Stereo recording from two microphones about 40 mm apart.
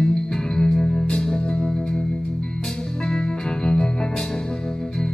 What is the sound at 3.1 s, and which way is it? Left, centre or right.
Music, centre.